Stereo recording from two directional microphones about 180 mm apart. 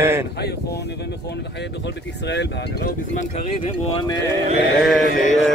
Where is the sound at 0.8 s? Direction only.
70° left (ahead or behind).